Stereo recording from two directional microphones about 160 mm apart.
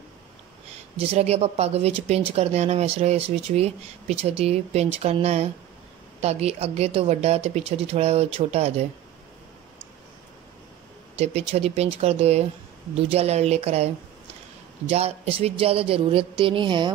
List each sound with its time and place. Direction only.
0.9 s speech: 40° right (ahead or behind)
11.1 s speech: 40° right (ahead or behind)